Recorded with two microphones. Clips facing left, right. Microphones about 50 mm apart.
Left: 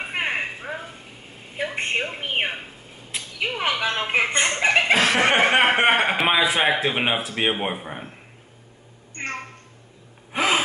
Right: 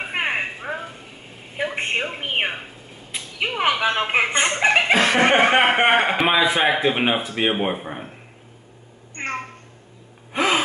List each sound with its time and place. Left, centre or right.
0.0 s a sound: centre
9.1 s meow: centre
10.3 s gasp: centre